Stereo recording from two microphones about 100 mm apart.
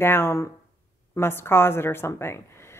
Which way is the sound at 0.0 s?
25° left (ahead or behind).